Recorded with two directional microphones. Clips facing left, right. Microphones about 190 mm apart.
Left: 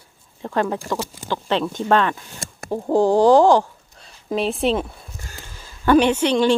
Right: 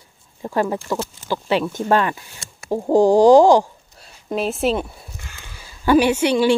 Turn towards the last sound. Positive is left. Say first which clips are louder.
# right 1 dB
turn(degrees=-10)  # may be behind; listen again after turning